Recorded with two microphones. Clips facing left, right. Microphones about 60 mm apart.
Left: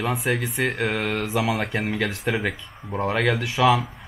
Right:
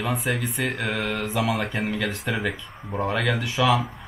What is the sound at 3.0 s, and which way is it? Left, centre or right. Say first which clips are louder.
Speech: left 3 dB; centre.